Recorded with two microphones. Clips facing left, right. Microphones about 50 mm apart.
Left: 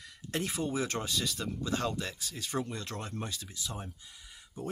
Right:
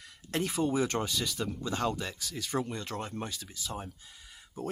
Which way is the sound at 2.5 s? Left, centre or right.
Centre.